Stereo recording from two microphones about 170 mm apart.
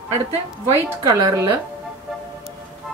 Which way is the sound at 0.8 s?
15° right (ahead or behind).